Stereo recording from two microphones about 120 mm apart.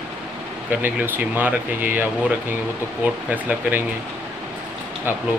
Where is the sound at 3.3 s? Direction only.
15° right (ahead or behind).